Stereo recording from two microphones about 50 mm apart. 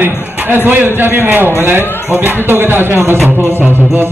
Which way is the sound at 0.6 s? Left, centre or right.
Right.